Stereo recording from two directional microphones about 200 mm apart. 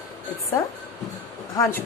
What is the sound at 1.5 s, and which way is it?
Speech, 10° left (ahead or behind).